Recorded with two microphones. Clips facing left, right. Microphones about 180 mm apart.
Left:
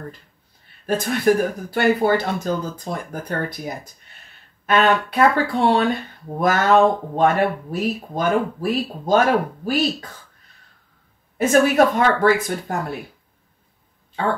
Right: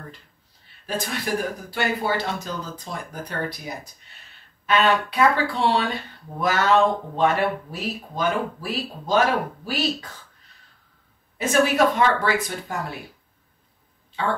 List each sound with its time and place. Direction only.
0.8 s speech: 50° left (ahead or behind)
11.3 s speech: 50° left (ahead or behind)
14.2 s speech: 50° left (ahead or behind)